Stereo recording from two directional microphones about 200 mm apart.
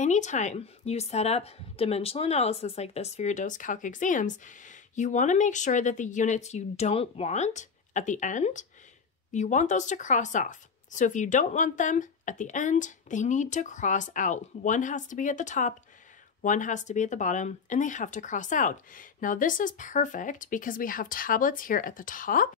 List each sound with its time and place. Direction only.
0.0 s a woman's voice: 35° left (ahead or behind)